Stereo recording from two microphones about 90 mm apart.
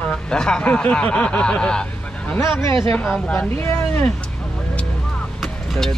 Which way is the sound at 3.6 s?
20° left (ahead or behind).